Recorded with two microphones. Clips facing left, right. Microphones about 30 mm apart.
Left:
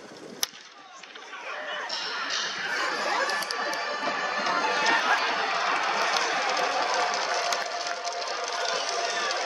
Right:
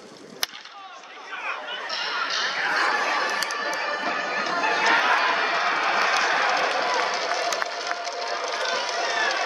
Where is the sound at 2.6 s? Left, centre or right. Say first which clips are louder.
Right 6 dB; right.